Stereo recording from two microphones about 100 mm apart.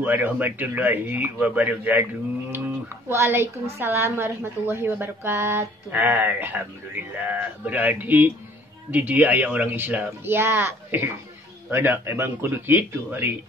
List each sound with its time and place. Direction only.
0.0 s a man's voice: 20° right (ahead or behind)
3.1 s a woman's voice: 25° right (ahead or behind)